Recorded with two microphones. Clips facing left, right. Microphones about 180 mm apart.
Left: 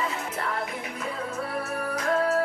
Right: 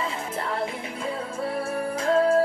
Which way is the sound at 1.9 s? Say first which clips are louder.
Right 4 dB; 30° right (ahead or behind).